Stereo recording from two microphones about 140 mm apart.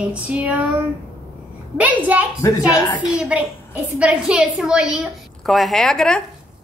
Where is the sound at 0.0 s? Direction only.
10° right (ahead or behind).